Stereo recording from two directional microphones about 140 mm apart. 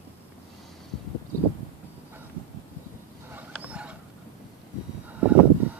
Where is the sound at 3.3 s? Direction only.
10° right (ahead or behind).